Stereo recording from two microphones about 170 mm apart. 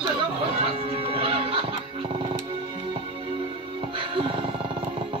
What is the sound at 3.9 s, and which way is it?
Music, 30° right (ahead or behind).